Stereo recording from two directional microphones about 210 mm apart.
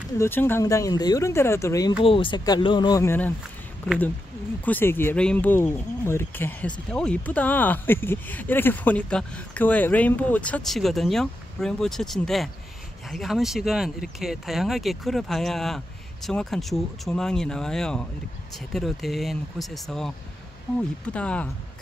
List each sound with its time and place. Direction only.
0.2 s speech: 10° left (ahead or behind)